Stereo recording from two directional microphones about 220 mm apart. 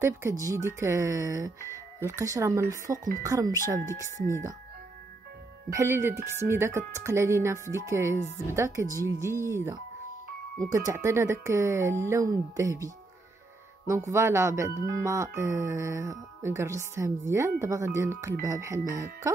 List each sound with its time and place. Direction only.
0.0 s speech: 15° right (ahead or behind)
5.7 s speech: 15° right (ahead or behind)
10.9 s speech: 15° right (ahead or behind)